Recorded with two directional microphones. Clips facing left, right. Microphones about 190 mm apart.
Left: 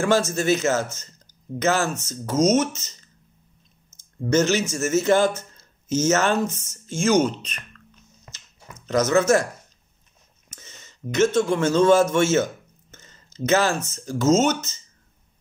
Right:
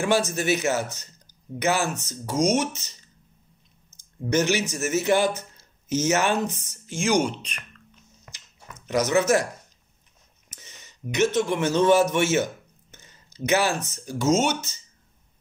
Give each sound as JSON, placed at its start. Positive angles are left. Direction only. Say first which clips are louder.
{"t": 0.0, "sound": "speech", "louder": "left 2 dB", "side_deg": -15}
{"t": 8.3, "sound": "a sound", "louder": "left 1 dB", "side_deg": 30}
{"t": 8.8, "sound": "speech", "louder": "left 3 dB", "side_deg": -15}
{"t": 10.5, "sound": "speech", "louder": "left 2 dB", "side_deg": -15}
{"t": 12.9, "sound": "a sound", "louder": "left 3 dB", "side_deg": -15}
{"t": 13.5, "sound": "speech", "louder": "left 2 dB", "side_deg": -15}